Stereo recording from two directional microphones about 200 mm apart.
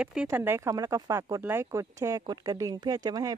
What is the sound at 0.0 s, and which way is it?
Speech, 5° right (ahead or behind).